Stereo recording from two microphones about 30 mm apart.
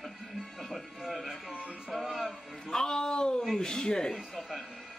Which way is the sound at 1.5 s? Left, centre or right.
Right.